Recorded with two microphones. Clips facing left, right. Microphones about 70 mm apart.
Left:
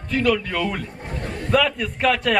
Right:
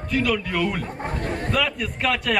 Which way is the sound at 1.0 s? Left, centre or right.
Right.